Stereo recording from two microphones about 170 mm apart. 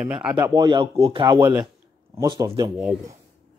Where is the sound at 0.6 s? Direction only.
30° right (ahead or behind).